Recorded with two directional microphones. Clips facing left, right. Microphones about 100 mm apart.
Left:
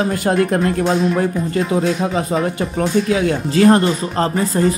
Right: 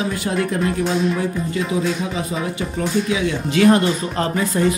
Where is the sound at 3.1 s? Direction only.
40° left (ahead or behind).